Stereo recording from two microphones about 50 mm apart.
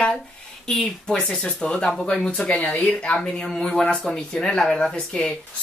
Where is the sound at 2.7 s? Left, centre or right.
Left.